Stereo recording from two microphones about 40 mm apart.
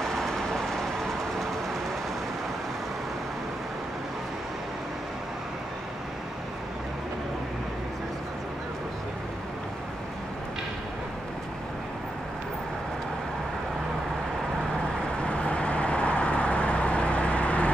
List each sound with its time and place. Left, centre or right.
0.0 s vehicle: centre
15.1 s vehicle: left